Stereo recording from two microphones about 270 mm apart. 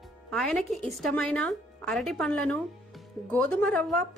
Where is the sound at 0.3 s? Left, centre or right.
Centre.